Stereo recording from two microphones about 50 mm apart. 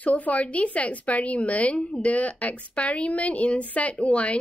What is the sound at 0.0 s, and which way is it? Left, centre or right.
Speech, left.